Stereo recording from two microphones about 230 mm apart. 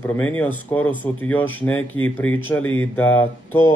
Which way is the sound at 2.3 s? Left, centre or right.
Left.